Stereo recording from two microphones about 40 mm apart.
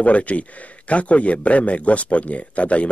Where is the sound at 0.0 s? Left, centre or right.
Left.